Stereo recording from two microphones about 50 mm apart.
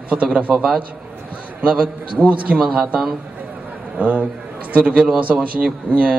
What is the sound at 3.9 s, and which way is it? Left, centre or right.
A man's voice, right.